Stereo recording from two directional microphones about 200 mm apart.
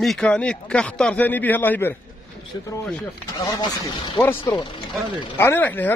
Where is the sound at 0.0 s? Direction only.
5° left (ahead or behind).